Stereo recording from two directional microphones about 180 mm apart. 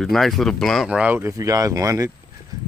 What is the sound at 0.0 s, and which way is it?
Speech, centre (ahead or behind).